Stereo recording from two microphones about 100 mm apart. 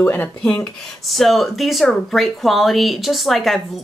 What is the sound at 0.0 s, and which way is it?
Speech, 15° left (ahead or behind).